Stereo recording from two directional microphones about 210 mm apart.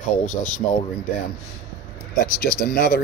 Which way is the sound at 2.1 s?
45° left (ahead or behind).